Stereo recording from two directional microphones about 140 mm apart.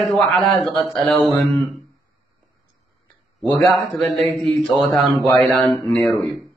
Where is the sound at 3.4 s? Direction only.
Centre (ahead or behind).